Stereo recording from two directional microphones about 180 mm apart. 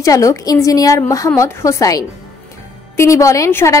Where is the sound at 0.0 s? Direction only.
20° left (ahead or behind).